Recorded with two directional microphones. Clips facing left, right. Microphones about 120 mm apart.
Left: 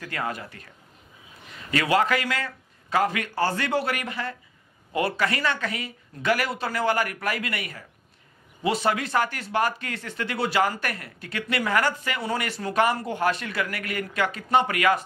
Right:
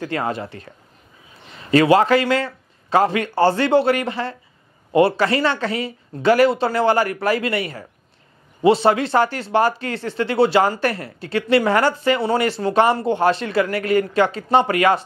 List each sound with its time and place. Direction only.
0.0 s a man's voice: 30° right (ahead or behind)